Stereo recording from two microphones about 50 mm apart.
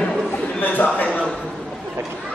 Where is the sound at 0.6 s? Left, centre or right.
Left.